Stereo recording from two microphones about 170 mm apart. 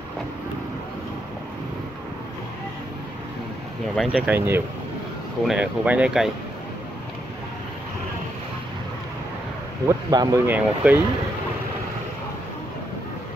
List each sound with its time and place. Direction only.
3.9 s speech: centre (ahead or behind)
4.4 s speech: 15° right (ahead or behind)
9.8 s speech: 25° right (ahead or behind)
10.5 s speech: 10° right (ahead or behind)